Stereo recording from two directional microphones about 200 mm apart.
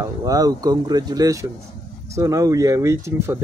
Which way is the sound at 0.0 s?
15° right (ahead or behind).